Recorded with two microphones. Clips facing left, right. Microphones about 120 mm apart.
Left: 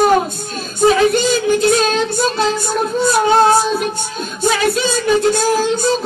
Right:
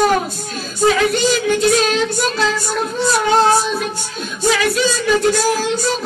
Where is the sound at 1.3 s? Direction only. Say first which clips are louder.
Left 1 dB; 35° left (ahead or behind).